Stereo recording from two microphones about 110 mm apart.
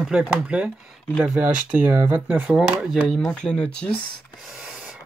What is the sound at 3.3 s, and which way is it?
Speech, 10° left (ahead or behind).